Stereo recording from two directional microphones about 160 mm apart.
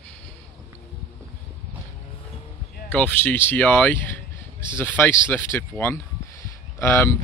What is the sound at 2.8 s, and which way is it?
Speech, 10° left (ahead or behind).